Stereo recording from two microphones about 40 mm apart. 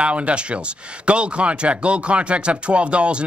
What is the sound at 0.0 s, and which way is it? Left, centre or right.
Speech, right.